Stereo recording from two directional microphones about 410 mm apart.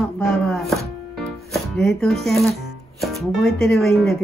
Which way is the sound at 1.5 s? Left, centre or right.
Centre.